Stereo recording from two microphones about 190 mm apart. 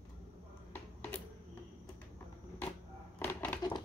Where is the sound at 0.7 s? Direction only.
10° left (ahead or behind).